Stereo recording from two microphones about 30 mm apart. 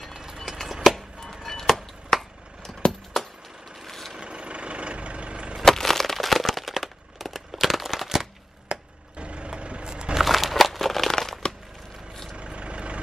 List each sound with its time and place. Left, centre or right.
0.1 s a sound: centre
1.4 s music: centre
2.8 s a sound: left
3.8 s vehicle: centre
4.2 s vehicle: right
5.7 s crumpling: centre
8.6 s vehicle: right
9.8 s a sound: right
10.2 s crumpling: centre
12.4 s vehicle: right